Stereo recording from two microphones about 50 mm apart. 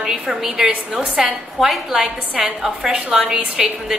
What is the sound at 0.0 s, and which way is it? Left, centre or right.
A woman's voice, centre.